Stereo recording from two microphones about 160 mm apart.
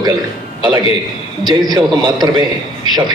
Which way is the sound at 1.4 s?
25° right (ahead or behind).